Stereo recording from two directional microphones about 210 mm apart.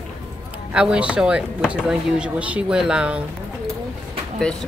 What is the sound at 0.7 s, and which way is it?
Speech, 5° right (ahead or behind).